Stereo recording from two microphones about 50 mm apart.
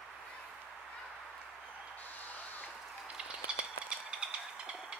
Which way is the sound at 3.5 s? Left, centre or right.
Right.